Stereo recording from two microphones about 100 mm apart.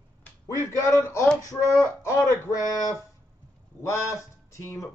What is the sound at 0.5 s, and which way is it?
A man's voice, 30° left (ahead or behind).